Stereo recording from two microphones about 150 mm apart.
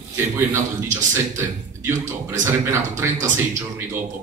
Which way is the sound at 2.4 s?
20° right (ahead or behind).